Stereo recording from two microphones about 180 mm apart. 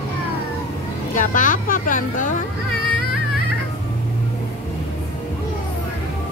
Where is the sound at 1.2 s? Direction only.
45° left (ahead or behind).